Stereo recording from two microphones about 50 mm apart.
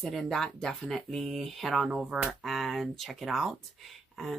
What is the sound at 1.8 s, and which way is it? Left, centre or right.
Speech, centre.